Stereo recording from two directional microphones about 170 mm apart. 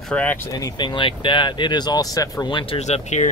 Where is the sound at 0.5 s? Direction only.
25° left (ahead or behind).